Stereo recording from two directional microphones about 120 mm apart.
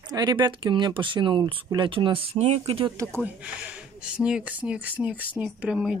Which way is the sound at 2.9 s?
25° right (ahead or behind).